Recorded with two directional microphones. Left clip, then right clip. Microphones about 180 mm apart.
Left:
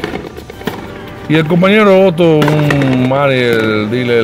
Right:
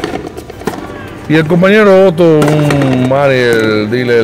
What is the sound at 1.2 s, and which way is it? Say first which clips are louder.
Speech: right 2 dB; 5° left (ahead or behind).